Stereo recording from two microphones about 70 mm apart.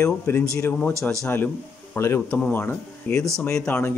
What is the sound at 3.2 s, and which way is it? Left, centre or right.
Speech, centre.